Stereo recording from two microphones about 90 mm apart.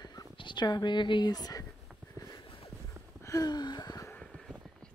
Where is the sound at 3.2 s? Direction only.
45° left (ahead or behind).